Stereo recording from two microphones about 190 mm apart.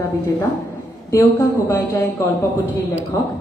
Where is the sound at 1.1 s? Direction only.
15° left (ahead or behind).